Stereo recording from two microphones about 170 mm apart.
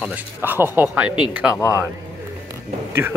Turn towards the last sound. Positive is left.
turn(degrees=-15)  # may be behind; listen again after turning